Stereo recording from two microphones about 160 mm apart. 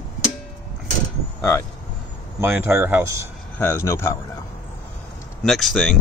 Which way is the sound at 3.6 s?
15° left (ahead or behind).